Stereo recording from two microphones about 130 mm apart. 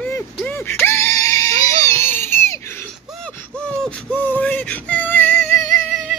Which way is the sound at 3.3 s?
10° left (ahead or behind).